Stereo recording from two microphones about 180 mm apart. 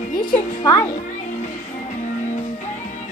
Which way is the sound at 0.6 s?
20° left (ahead or behind).